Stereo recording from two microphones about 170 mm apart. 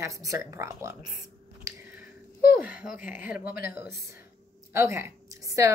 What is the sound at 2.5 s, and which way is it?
A woman's voice, 10° right (ahead or behind).